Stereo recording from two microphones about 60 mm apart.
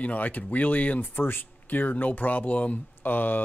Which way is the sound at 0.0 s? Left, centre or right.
Left.